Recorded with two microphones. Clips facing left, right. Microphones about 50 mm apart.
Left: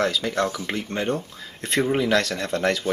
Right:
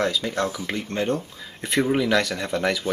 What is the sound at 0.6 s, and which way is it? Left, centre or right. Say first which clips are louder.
Speech: even; centre.